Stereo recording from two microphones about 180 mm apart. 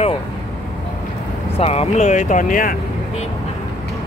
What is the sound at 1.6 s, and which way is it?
Speech, 35° left (ahead or behind).